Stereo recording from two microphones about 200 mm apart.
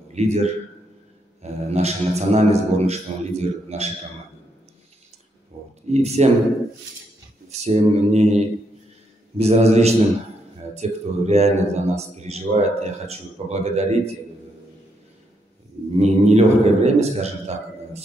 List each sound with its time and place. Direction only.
0.1 s a man's voice: 35° right (ahead or behind)
5.9 s a man's voice: 35° right (ahead or behind)
7.4 s a man's voice: 35° right (ahead or behind)
9.4 s a man's voice: 30° right (ahead or behind)
16.0 s a man's voice: 35° right (ahead or behind)